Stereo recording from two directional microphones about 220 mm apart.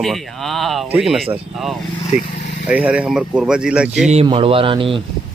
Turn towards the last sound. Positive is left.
turn(degrees=-25)  # may be behind; listen again after turning